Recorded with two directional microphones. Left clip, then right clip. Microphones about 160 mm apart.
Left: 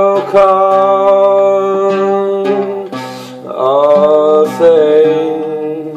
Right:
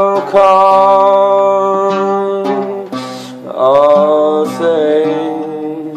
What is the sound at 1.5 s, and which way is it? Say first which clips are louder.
Humming: even; centre (ahead or behind).